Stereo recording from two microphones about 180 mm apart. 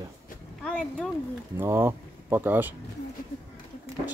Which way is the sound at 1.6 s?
15° right (ahead or behind).